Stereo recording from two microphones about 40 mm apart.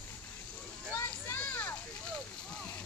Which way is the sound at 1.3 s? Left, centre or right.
Left.